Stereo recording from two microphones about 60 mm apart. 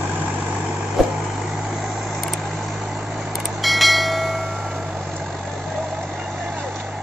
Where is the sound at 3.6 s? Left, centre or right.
Centre.